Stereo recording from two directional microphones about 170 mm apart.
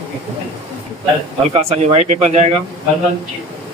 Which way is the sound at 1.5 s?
40° right (ahead or behind).